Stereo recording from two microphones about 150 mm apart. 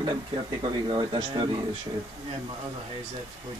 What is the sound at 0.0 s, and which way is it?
Speech, 30° right (ahead or behind).